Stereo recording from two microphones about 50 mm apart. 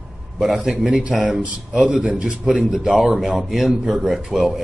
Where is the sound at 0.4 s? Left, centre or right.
Centre.